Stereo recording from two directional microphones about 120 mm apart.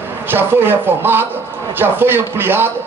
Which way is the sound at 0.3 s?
15° right (ahead or behind).